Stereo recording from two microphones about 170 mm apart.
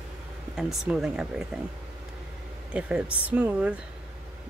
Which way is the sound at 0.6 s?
5° right (ahead or behind).